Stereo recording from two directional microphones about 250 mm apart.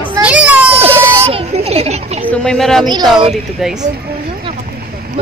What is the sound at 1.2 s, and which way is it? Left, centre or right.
A child's voice, right.